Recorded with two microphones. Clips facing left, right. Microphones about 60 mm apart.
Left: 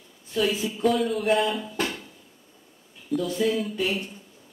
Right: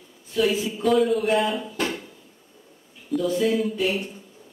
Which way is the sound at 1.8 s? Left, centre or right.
Right.